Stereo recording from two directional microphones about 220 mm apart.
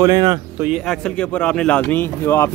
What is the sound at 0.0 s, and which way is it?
Speech, 15° right (ahead or behind).